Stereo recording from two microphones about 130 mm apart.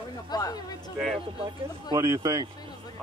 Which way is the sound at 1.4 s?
30° right (ahead or behind).